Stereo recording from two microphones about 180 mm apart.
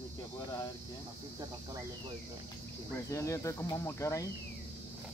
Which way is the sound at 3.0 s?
15° left (ahead or behind).